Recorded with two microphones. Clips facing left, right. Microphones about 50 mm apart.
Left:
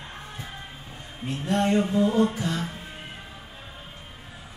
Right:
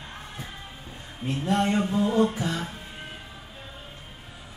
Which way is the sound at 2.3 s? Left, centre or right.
Centre.